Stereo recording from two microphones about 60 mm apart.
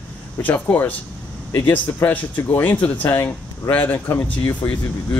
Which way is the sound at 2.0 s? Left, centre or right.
Left.